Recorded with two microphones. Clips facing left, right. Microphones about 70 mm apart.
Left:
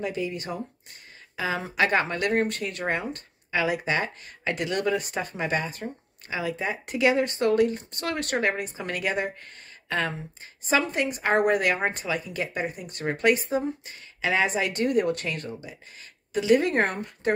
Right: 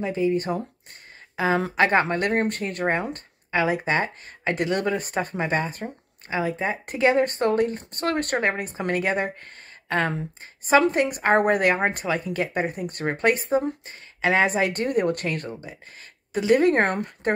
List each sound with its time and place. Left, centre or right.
0.0 s a woman's voice: right